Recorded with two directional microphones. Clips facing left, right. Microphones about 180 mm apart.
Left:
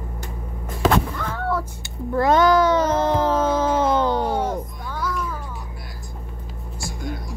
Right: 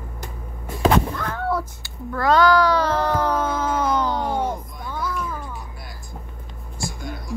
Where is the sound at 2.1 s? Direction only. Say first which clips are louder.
Left 1 dB; 25° left (ahead or behind).